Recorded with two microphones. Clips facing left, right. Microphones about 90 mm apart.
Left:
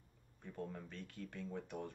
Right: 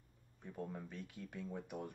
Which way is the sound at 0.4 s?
15° right (ahead or behind).